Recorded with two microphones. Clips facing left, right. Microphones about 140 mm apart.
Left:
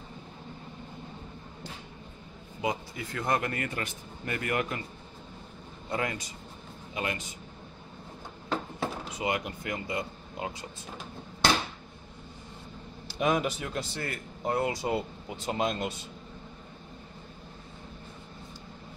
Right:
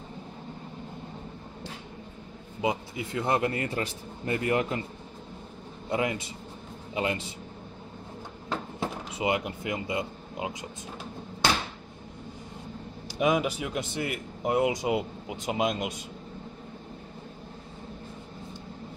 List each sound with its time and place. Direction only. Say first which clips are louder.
2.6 s a man's voice: right 3 dB; 20° right (ahead or behind)
5.9 s a man's voice: right 4 dB; 20° right (ahead or behind)
8.7 s speech: right 1 dB; 20° right (ahead or behind)
13.2 s speech: right 2 dB; 10° right (ahead or behind)